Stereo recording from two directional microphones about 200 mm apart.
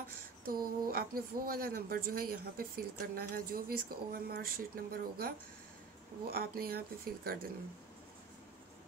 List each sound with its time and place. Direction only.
0.5 s a woman's voice: 50° right (ahead or behind)